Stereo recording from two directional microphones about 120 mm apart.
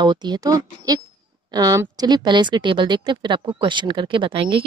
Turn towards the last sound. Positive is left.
turn(degrees=-45)  # may be behind; listen again after turning